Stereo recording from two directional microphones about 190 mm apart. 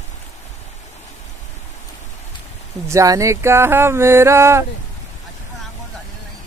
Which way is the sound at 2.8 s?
15° right (ahead or behind).